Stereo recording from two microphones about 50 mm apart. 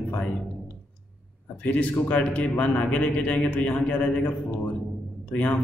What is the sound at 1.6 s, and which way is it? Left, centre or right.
A man's voice, left.